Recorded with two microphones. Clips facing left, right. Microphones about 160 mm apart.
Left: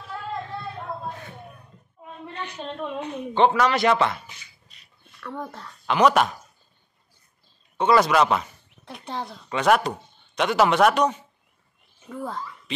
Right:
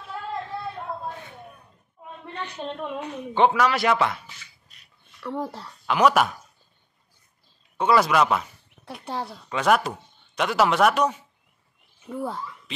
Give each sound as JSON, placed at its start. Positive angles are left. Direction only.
{"t": 2.8, "sound": "a woman's voice", "side_deg": -10}
{"t": 5.2, "sound": "speech", "side_deg": -30}
{"t": 5.6, "sound": "a woman's voice", "side_deg": -5}
{"t": 7.7, "sound": "speech", "side_deg": -5}